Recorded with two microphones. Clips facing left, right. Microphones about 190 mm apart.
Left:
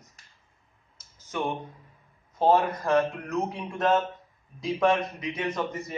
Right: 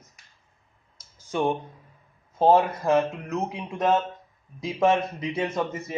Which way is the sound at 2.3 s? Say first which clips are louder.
Right 3 dB; 25° right (ahead or behind).